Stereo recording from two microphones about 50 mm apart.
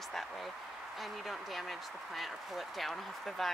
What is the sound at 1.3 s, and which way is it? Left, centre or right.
Speech, centre.